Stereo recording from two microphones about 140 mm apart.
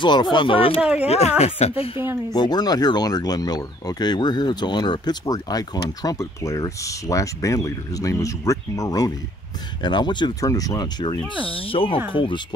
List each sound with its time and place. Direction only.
0.0 s speech: 35° left (ahead or behind)
0.7 s speech: 5° right (ahead or behind)
1.0 s a woman's voice: 50° left (ahead or behind)
2.3 s speech: 30° left (ahead or behind)
11.4 s speech: 40° left (ahead or behind)